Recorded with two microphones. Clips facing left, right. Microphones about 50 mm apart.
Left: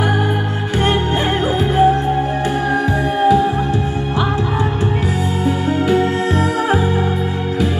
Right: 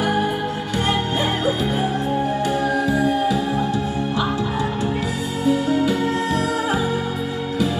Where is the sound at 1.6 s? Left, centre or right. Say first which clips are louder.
Left 9 dB; left.